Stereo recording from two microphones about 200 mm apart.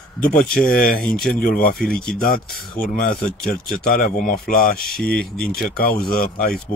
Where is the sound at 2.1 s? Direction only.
45° left (ahead or behind).